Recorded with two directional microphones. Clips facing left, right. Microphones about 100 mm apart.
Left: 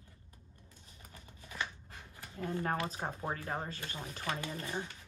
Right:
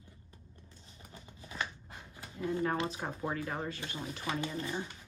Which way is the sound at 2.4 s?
45° left (ahead or behind).